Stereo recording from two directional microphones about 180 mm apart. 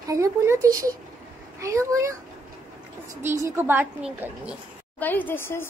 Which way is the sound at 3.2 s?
15° right (ahead or behind).